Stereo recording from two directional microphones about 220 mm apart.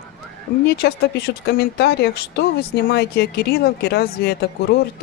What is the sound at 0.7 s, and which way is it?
Speech, 45° left (ahead or behind).